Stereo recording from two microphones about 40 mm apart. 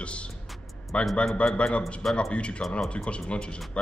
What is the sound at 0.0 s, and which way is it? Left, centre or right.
Music, left.